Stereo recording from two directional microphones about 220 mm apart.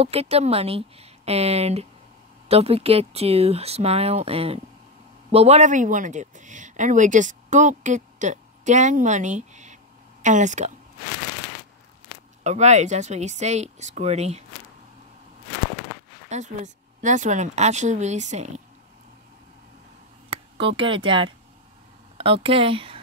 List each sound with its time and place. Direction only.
0.0 s speech: 25° right (ahead or behind)
12.4 s speech: 30° right (ahead or behind)
16.3 s speech: 35° right (ahead or behind)
20.2 s speech: 25° right (ahead or behind)